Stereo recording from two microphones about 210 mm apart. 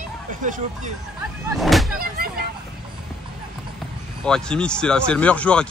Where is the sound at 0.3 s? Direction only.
35° right (ahead or behind).